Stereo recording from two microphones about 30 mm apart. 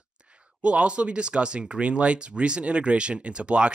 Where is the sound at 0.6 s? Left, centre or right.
Right.